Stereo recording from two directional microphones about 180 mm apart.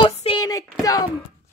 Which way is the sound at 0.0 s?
30° left (ahead or behind).